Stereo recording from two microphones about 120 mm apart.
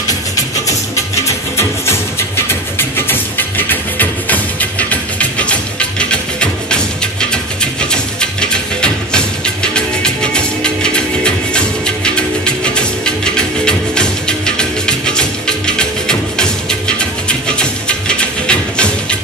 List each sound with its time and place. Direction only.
1.2 s music: 20° left (ahead or behind)
3.1 s music: 15° left (ahead or behind)